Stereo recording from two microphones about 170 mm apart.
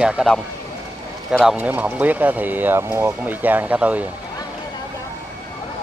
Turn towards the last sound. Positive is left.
turn(degrees=-10)  # may be behind; listen again after turning